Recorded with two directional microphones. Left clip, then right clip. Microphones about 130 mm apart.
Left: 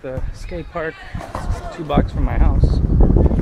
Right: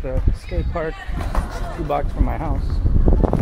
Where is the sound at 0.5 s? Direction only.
Centre (ahead or behind).